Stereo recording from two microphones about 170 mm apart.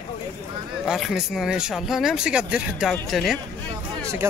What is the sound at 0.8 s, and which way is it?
Speech, centre (ahead or behind).